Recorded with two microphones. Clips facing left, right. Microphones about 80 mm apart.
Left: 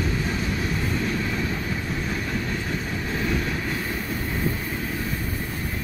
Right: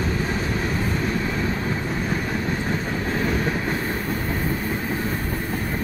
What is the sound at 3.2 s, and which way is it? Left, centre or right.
Train, right.